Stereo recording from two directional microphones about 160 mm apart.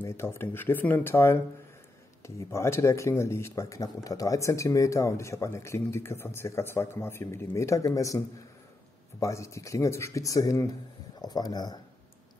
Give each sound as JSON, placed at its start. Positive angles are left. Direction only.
{"t": 0.0, "sound": "speech", "side_deg": 15}
{"t": 9.2, "sound": "speech", "side_deg": 20}